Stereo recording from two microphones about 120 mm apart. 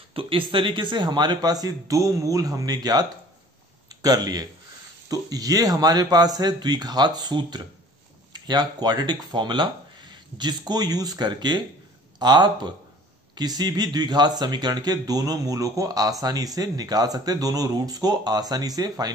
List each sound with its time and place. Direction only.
0.1 s speech: 45° right (ahead or behind)